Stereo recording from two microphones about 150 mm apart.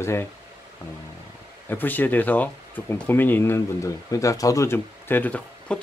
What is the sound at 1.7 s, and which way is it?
Speech, 15° left (ahead or behind).